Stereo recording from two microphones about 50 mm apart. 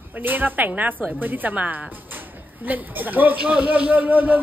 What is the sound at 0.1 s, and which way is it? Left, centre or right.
A woman's voice, right.